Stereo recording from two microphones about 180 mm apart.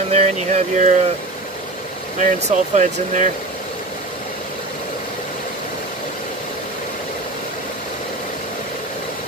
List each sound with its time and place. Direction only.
0.1 s speech: 35° right (ahead or behind)
2.1 s speech: 45° right (ahead or behind)